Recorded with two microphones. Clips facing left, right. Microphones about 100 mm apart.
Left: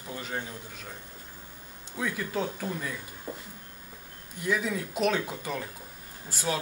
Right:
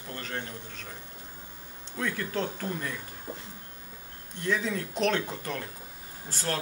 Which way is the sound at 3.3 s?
20° right (ahead or behind).